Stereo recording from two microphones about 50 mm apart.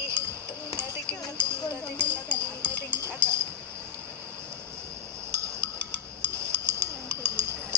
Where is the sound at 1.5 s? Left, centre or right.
Left.